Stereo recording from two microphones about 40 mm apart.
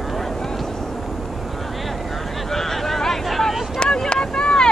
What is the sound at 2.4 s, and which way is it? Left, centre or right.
Vehicle, centre.